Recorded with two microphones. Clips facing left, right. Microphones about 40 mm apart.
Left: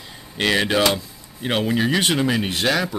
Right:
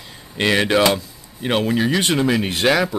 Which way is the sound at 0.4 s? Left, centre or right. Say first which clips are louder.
Right 2 dB; centre.